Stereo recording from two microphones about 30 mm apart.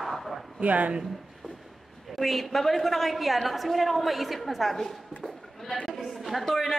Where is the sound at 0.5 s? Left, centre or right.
Right.